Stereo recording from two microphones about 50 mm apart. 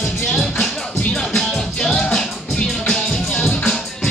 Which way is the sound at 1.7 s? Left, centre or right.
Centre.